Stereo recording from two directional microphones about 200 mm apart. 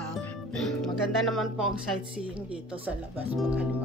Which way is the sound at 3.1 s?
5° right (ahead or behind).